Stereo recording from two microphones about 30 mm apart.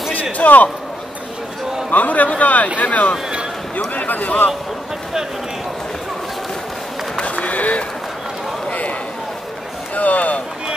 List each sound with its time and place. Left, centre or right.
0.1 s a man's voice: left
1.9 s a man's voice: left
7.2 s a man's voice: left
9.9 s speech: left